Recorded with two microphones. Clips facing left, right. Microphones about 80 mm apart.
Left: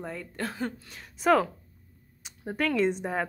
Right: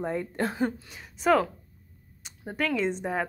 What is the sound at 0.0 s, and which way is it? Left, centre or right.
Speech, right.